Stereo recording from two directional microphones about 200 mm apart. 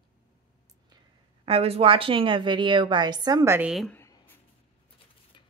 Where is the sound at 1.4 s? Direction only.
30° right (ahead or behind); by 3.9 s centre (ahead or behind).